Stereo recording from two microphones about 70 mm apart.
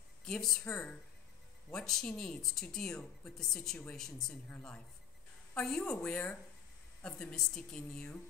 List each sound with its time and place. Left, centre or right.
0.2 s speech: centre
0.7 s speech: left
1.7 s speech: centre
5.6 s a woman's voice: centre